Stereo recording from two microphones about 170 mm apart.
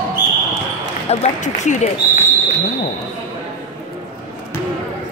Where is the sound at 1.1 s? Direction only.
45° left (ahead or behind).